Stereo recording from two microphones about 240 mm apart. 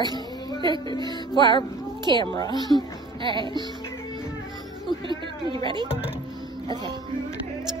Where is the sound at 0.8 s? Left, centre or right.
Centre.